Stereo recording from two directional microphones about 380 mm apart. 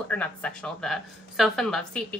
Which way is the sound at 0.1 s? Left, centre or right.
Centre.